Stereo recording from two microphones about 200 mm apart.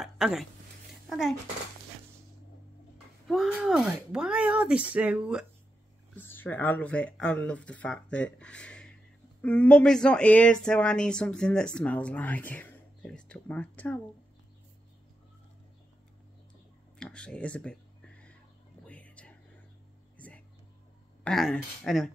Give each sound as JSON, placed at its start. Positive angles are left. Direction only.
{"t": 0.0, "sound": "speech", "side_deg": 0}
{"t": 3.3, "sound": "speech", "side_deg": 0}
{"t": 6.1, "sound": "speech", "side_deg": 10}
{"t": 17.0, "sound": "a sound", "side_deg": 5}
{"t": 18.9, "sound": "music", "side_deg": 5}
{"t": 20.2, "sound": "a sound", "side_deg": 5}
{"t": 21.2, "sound": "speech", "side_deg": 5}